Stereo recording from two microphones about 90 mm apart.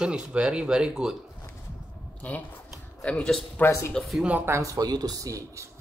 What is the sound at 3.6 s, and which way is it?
Speech, 30° left (ahead or behind).